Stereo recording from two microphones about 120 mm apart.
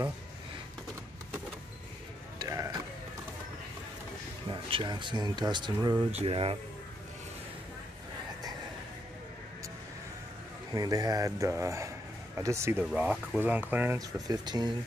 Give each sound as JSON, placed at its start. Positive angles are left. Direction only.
{"t": 2.3, "sound": "a sound", "side_deg": -30}
{"t": 4.5, "sound": "speech", "side_deg": -45}
{"t": 6.1, "sound": "speech", "side_deg": -55}
{"t": 10.7, "sound": "speech", "side_deg": -30}
{"t": 12.8, "sound": "speech", "side_deg": -10}
{"t": 13.9, "sound": "speech", "side_deg": -30}